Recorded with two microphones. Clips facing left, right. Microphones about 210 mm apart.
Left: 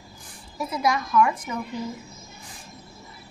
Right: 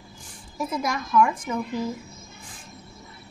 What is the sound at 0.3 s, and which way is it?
Speech, 50° right (ahead or behind).